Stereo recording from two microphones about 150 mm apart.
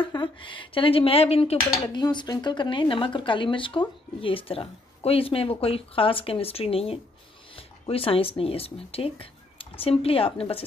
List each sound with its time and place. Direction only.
0.0 s speech: 35° left (ahead or behind)
1.7 s speech: 30° left (ahead or behind)